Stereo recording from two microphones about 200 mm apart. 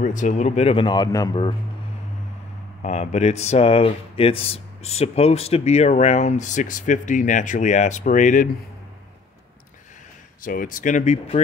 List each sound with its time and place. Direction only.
0.0 s speech: 40° left (ahead or behind); by 1.5 s 20° left (ahead or behind)
2.8 s speech: 35° left (ahead or behind)
10.4 s speech: 45° left (ahead or behind)